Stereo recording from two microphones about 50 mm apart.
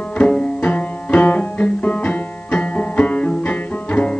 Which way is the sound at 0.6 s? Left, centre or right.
Left.